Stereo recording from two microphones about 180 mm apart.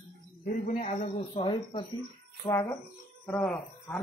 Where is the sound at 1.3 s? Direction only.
25° left (ahead or behind).